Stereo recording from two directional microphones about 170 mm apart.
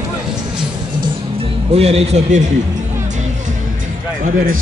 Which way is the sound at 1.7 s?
35° right (ahead or behind).